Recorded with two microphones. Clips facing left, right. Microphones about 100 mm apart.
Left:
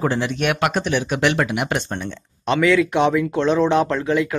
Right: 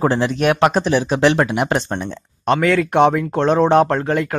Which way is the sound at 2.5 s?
45° right (ahead or behind).